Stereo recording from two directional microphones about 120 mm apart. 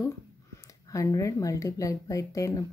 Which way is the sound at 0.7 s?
30° left (ahead or behind).